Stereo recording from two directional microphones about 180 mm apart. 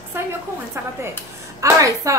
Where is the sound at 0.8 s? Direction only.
15° right (ahead or behind).